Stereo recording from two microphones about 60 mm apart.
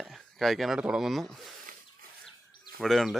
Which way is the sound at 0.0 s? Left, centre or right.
Centre.